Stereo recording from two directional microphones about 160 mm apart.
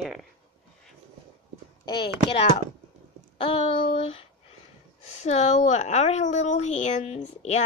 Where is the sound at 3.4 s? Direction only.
35° left (ahead or behind).